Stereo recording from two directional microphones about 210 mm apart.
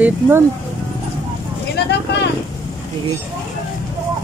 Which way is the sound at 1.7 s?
55° left (ahead or behind).